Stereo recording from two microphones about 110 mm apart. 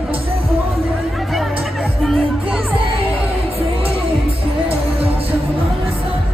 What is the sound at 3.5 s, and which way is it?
Music, 60° right (ahead or behind).